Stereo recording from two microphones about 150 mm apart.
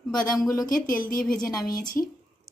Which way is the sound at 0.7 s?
70° left (ahead or behind).